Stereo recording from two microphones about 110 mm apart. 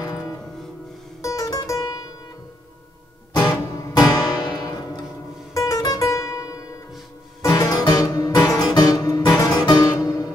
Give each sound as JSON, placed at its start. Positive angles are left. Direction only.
{"t": 0.0, "sound": "music", "side_deg": 30}
{"t": 3.7, "sound": "music", "side_deg": 30}
{"t": 4.1, "sound": "music", "side_deg": 40}